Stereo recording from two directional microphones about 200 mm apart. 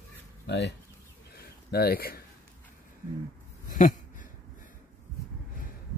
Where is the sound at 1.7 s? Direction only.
50° left (ahead or behind).